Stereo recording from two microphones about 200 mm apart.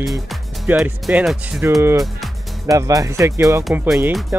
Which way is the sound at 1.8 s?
15° right (ahead or behind).